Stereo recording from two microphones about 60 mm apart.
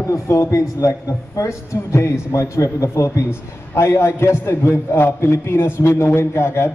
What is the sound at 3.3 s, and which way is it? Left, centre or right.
A man's voice, left.